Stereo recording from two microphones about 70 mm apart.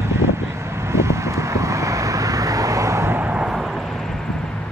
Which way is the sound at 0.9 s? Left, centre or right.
Right.